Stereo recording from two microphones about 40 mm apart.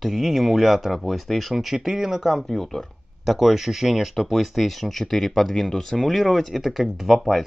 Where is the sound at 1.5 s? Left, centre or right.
Centre.